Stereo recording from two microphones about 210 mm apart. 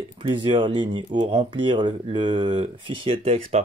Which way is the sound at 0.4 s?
20° right (ahead or behind).